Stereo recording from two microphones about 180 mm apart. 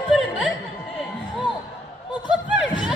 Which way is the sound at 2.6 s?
5° right (ahead or behind).